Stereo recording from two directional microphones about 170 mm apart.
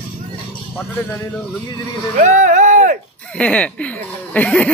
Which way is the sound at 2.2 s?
45° right (ahead or behind).